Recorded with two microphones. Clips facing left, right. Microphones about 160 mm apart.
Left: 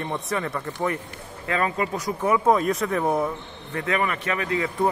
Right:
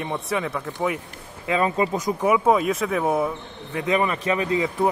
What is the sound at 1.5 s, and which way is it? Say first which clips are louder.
Speech: right 3 dB; 20° right (ahead or behind).